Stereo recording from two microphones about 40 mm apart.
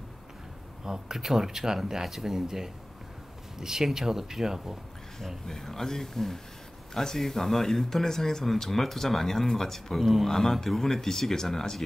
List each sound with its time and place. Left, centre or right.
0.8 s speech: centre
5.5 s speech: centre